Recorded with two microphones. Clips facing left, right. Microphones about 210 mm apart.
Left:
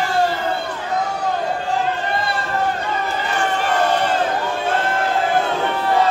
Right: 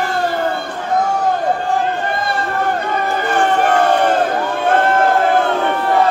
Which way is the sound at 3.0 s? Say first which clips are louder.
Right 5 dB; 55° right (ahead or behind).